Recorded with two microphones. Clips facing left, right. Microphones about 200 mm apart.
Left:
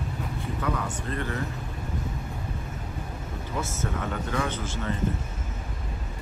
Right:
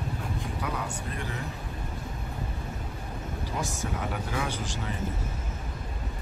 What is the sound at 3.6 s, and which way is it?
Speech, 15° right (ahead or behind).